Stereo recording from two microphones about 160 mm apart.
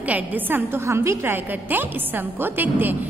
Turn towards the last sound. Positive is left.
turn(degrees=-10)  # may be behind; listen again after turning